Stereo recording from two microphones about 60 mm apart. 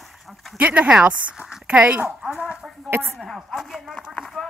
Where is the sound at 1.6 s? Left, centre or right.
Centre.